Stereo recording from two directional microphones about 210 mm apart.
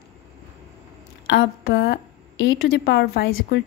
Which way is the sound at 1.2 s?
50° left (ahead or behind).